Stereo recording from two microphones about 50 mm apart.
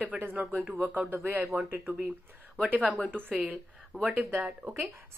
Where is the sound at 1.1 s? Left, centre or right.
Right.